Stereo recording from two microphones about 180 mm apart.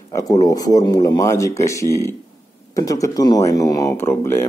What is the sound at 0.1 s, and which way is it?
A man's voice, 20° left (ahead or behind).